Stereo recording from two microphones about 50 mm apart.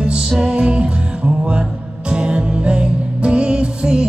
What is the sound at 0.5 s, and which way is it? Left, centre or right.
Music, right.